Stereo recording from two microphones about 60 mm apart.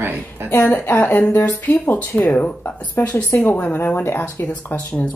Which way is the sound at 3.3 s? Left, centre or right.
Left.